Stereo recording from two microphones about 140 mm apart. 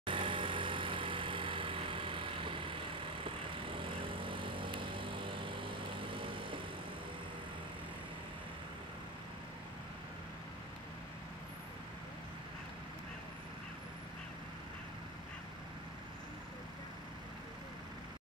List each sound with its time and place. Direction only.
0.0 s vehicle: 35° right (ahead or behind)